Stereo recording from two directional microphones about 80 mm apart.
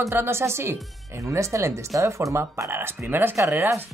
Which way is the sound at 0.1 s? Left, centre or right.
Right.